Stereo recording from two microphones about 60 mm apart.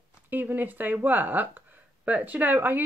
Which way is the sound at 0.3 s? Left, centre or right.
Right.